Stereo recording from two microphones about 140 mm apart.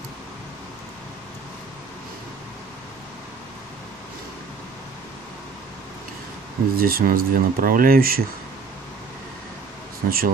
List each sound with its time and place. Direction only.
6.7 s speech: 90° right
10.0 s speech: 90° right